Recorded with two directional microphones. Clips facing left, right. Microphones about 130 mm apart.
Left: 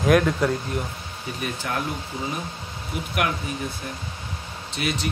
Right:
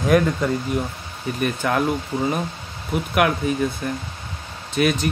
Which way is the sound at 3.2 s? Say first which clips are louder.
Right 5 dB; 70° right (ahead or behind).